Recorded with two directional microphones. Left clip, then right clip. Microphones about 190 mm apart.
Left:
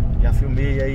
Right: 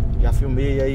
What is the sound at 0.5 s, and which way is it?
Speech, 15° right (ahead or behind).